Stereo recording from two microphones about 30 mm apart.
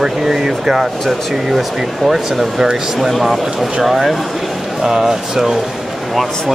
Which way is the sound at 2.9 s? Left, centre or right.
Centre.